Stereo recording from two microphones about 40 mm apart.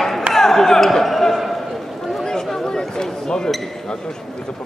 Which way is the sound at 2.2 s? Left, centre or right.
Centre.